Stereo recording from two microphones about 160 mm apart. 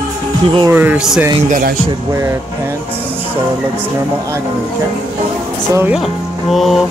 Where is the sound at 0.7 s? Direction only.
10° right (ahead or behind).